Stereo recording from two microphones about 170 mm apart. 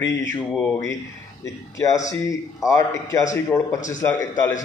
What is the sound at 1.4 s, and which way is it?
A man's voice, 20° left (ahead or behind).